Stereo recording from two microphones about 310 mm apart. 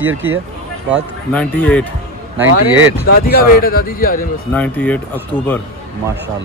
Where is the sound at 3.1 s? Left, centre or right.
Left.